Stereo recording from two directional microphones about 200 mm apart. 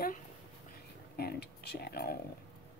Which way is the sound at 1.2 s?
50° left (ahead or behind).